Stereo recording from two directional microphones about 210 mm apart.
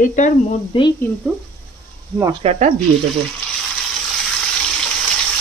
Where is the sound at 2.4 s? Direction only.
35° right (ahead or behind).